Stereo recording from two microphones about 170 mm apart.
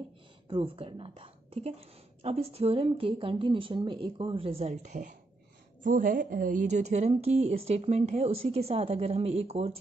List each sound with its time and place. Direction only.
0.5 s a woman's voice: 30° right (ahead or behind)